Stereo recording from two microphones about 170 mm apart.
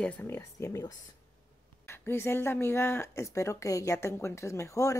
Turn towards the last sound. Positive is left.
turn(degrees=20)  # may be behind; listen again after turning